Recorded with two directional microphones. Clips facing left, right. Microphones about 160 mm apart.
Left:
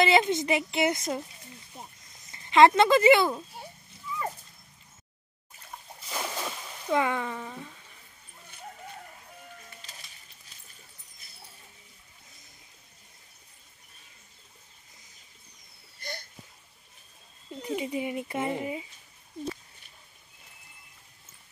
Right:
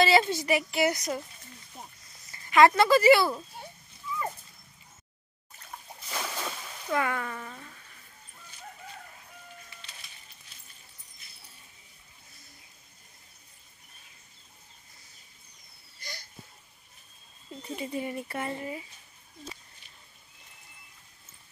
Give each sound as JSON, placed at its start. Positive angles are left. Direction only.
{"t": 0.0, "sound": "a woman's voice", "side_deg": 20}
{"t": 2.3, "sound": "speech", "side_deg": 25}
{"t": 5.9, "sound": "splash", "side_deg": 5}
{"t": 6.9, "sound": "speech", "side_deg": 20}
{"t": 9.8, "sound": "music", "side_deg": 40}
{"t": 16.0, "sound": "a sound", "side_deg": 55}
{"t": 17.7, "sound": "speech", "side_deg": 15}